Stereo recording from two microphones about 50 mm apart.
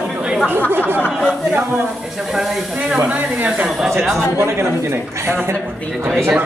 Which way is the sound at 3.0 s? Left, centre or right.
Right.